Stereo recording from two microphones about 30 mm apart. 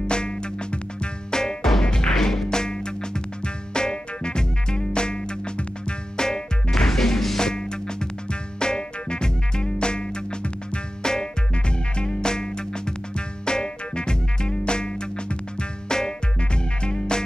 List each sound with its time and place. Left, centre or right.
0.0 s music: left
1.3 s music: left
6.9 s music: centre
7.3 s music: left
13.5 s music: left